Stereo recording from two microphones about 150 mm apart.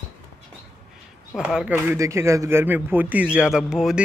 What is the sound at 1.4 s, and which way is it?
Speech, 5° right (ahead or behind).